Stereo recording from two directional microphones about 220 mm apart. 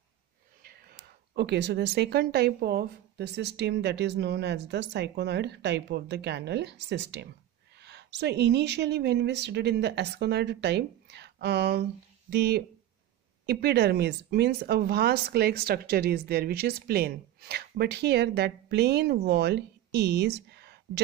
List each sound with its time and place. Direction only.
0.6 s speech: 45° right (ahead or behind)